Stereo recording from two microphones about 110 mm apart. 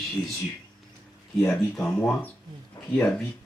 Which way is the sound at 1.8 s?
15° left (ahead or behind).